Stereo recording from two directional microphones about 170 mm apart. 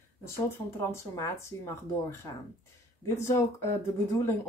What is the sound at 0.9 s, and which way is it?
Speech, 15° left (ahead or behind).